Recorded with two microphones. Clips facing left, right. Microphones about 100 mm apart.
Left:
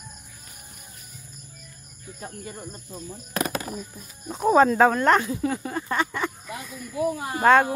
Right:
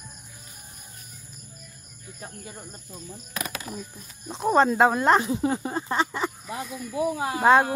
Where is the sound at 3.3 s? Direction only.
45° left (ahead or behind).